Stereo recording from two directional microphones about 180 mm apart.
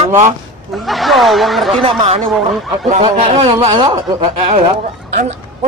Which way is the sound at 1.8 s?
30° right (ahead or behind).